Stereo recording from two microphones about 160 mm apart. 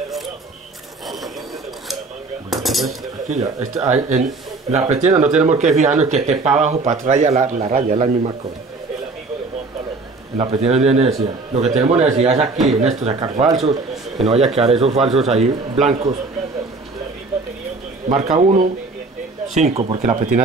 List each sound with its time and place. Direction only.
1.0 s a sound: centre (ahead or behind)
2.5 s cutlery: centre (ahead or behind)
3.3 s speech: 40° right (ahead or behind)
10.3 s a man's voice: 40° right (ahead or behind)
18.0 s speech: 50° right (ahead or behind)
19.6 s a man's voice: 40° right (ahead or behind)
20.0 s speech: 55° right (ahead or behind)